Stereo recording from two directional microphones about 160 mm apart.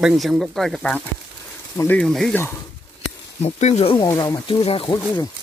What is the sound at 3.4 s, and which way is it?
Speech, 40° left (ahead or behind).